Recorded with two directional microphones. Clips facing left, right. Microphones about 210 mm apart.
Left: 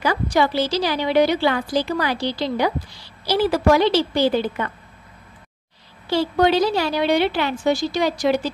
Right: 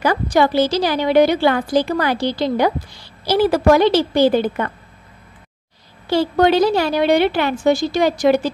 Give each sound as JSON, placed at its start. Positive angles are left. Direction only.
{"t": 0.0, "sound": "a woman's voice", "side_deg": -50}
{"t": 6.0, "sound": "a woman's voice", "side_deg": -50}